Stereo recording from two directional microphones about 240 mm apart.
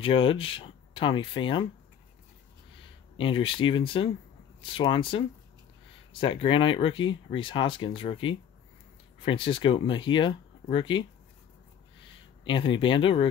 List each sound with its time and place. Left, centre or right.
0.0 s speech: left
3.2 s speech: left
12.4 s speech: left